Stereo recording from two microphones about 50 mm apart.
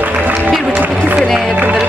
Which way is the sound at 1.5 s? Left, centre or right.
Right.